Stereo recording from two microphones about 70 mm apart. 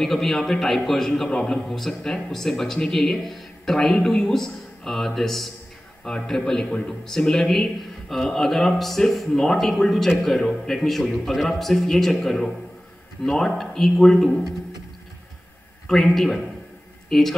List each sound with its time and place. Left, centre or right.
0.0 s a man's voice: centre
15.9 s a man's voice: centre